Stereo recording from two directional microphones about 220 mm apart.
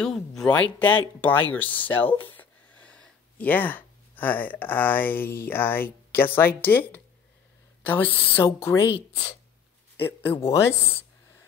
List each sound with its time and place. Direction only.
0.0 s speech: centre (ahead or behind)
9.9 s speech: 10° left (ahead or behind)